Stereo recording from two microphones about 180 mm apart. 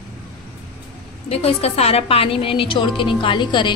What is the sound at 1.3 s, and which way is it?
A woman's voice, 35° left (ahead or behind).